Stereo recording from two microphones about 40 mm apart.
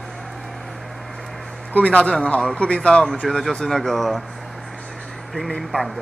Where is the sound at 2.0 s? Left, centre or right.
Left.